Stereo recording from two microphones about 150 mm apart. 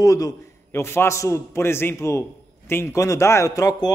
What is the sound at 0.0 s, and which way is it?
A man's voice, 20° left (ahead or behind).